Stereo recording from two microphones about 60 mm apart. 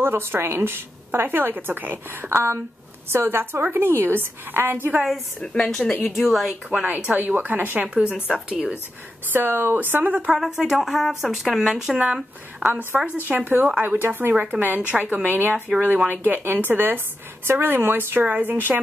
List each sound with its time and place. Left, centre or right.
0.0 s a woman's voice: right
5.4 s a woman's voice: centre
6.0 s speech: centre
6.7 s a woman's voice: right
9.3 s a woman's voice: right
10.3 s speech: centre
12.7 s a woman's voice: right
14.3 s a woman's voice: right